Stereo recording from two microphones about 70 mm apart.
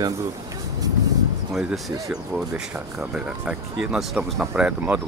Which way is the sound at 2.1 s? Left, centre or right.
Centre.